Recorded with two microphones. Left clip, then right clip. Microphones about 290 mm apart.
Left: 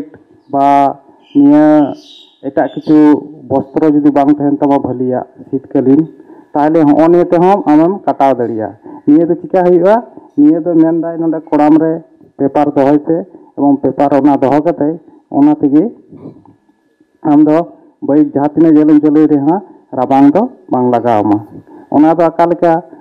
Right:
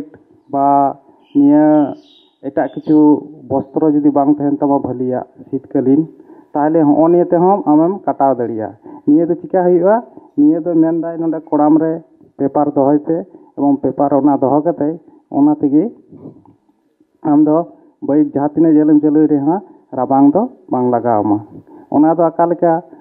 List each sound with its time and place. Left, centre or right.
0.5 s speech: centre
2.9 s speech: right
6.8 s speech: right
17.3 s speech: centre